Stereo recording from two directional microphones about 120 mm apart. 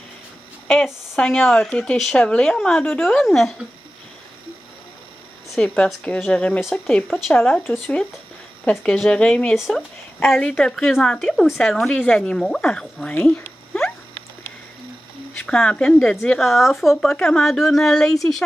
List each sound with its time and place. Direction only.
1.1 s speech: 5° left (ahead or behind)
2.8 s a woman's voice: 15° left (ahead or behind)
3.1 s speech: 5° left (ahead or behind)
5.5 s a woman's voice: 5° left (ahead or behind)
9.6 s a woman's voice: centre (ahead or behind)
15.3 s speech: 10° left (ahead or behind)